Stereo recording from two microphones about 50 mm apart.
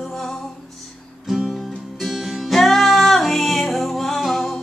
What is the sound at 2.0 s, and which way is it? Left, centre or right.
Music, centre.